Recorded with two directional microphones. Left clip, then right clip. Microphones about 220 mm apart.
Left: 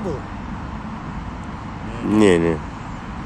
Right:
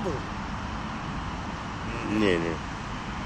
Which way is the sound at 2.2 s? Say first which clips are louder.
Left 10 dB; 30° left (ahead or behind).